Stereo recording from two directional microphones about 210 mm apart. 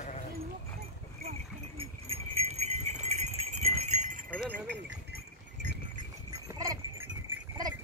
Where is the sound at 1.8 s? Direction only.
30° right (ahead or behind).